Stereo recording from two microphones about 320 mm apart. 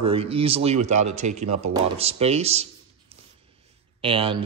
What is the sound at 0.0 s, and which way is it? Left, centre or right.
Speech, centre.